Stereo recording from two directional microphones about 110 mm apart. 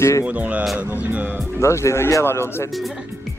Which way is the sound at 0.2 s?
10° right (ahead or behind).